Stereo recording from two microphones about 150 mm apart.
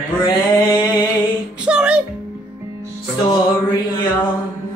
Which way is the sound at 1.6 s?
5° right (ahead or behind).